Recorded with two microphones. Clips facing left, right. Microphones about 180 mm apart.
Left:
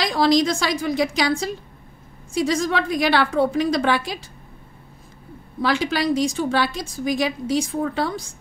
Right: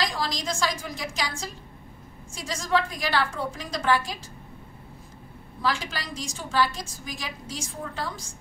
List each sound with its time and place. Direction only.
0.0 s a woman's voice: 70° left (ahead or behind)
5.6 s a woman's voice: 65° left (ahead or behind)